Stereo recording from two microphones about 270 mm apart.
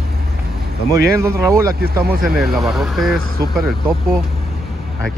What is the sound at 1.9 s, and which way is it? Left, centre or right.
Speech, right.